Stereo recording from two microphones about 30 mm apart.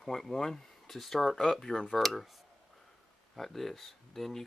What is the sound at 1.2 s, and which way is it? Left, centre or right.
Speech, centre.